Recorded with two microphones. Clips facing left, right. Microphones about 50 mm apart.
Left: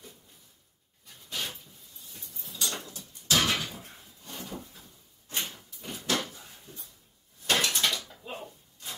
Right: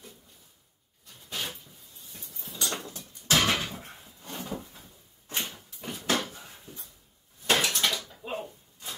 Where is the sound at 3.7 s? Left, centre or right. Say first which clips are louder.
Right 3 dB; right.